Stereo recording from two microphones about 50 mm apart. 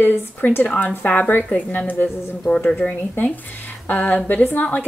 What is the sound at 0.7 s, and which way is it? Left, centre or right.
A woman's voice, left.